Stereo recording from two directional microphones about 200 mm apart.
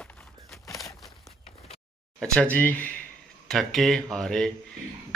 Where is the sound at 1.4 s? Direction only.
30° left (ahead or behind).